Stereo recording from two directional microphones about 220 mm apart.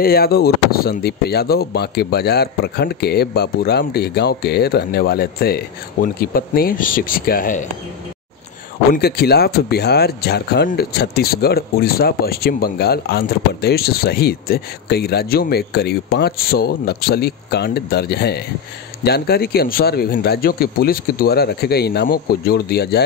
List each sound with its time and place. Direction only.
0.0 s speech: 45° left (ahead or behind)
8.9 s speech: 45° left (ahead or behind)